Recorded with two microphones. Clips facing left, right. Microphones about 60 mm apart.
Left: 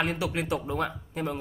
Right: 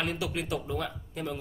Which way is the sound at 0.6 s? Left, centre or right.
Left.